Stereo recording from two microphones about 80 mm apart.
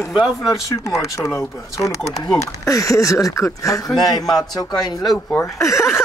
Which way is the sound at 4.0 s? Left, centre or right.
Left.